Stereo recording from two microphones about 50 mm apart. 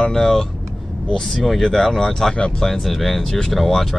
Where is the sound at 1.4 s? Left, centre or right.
Centre.